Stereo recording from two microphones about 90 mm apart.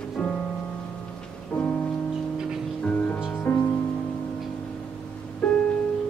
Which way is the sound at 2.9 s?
20° left (ahead or behind).